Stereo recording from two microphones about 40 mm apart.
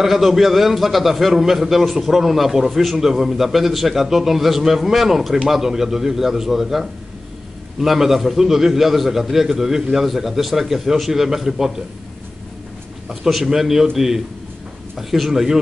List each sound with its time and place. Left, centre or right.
0.0 s a man's voice: centre
13.1 s a man's voice: centre